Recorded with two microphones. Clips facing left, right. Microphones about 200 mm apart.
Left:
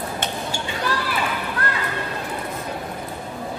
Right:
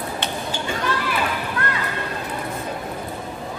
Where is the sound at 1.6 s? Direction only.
35° left (ahead or behind).